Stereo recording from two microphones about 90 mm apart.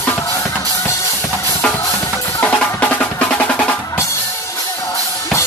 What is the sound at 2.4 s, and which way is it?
Percussion, 15° left (ahead or behind).